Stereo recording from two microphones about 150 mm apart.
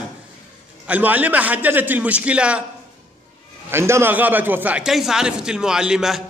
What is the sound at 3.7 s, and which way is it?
A man's voice, 15° right (ahead or behind).